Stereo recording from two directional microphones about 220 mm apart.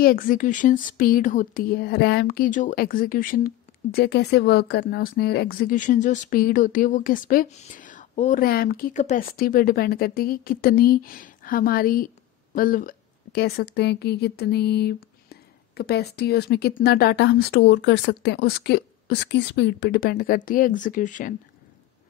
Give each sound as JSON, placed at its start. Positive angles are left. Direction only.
{"t": 0.0, "sound": "a woman's voice", "side_deg": 40}